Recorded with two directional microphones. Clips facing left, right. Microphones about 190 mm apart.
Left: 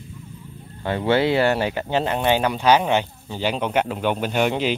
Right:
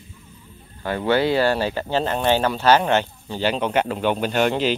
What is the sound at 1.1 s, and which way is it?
Speech, 25° left (ahead or behind).